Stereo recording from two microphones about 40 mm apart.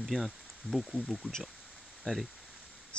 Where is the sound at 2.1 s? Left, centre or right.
Centre.